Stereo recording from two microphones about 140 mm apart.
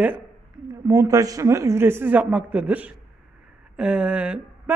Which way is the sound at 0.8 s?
20° right (ahead or behind).